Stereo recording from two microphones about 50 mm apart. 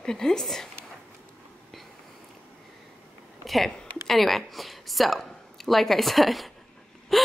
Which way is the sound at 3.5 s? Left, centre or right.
Centre.